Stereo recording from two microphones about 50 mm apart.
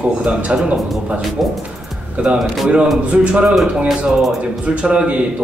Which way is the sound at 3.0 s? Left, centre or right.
Right.